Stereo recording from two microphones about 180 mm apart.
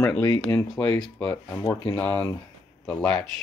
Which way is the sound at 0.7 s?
5° left (ahead or behind).